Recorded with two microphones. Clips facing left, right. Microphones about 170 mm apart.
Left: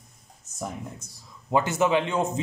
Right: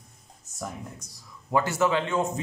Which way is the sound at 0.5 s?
20° left (ahead or behind).